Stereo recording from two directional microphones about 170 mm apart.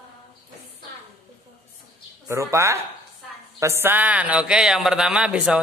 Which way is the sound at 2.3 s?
15° right (ahead or behind).